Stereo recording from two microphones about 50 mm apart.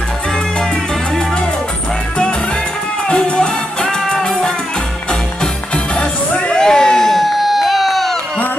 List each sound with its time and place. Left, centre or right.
3.1 s music: centre
5.9 s music: left
6.6 s crowd: centre